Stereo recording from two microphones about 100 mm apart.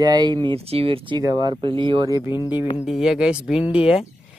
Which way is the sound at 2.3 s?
45° left (ahead or behind).